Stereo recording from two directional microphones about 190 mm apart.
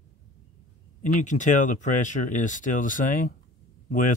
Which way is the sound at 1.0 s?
40° left (ahead or behind).